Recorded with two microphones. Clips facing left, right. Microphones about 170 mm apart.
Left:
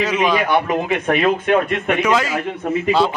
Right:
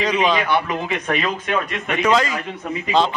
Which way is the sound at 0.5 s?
50° left (ahead or behind).